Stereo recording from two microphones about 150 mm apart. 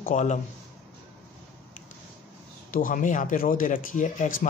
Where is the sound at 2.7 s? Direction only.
65° left (ahead or behind).